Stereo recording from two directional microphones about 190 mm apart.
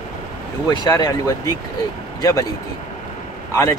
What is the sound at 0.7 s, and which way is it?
Speech, 20° left (ahead or behind).